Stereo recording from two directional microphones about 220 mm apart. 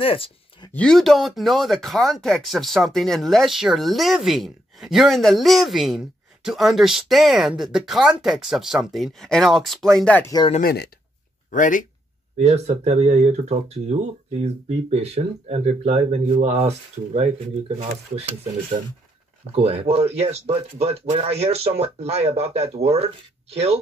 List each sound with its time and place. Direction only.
0.0 s speech: 25° left (ahead or behind)
0.7 s speech: centre (ahead or behind)
10.5 s speech: 45° left (ahead or behind)
12.4 s speech: 30° right (ahead or behind)
19.5 s speech: 25° right (ahead or behind)